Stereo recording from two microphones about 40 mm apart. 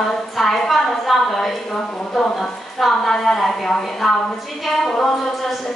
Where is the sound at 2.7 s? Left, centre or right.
Centre.